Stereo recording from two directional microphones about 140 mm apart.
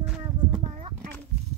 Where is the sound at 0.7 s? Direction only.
45° right (ahead or behind).